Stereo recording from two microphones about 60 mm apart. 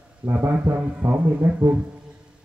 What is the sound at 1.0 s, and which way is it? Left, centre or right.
Speech, right.